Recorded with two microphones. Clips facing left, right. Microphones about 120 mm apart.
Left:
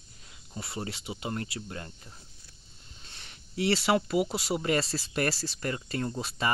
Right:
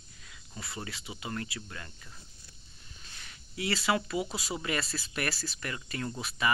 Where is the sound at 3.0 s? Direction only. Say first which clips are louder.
Even; 30° left (ahead or behind).